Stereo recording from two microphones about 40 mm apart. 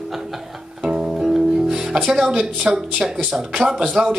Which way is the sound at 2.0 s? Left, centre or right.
Centre.